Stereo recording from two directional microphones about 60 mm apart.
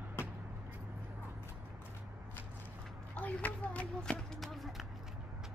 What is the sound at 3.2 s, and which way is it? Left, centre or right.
Speech, left.